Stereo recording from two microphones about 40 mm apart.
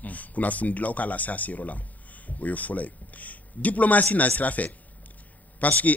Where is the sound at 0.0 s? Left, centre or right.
Left.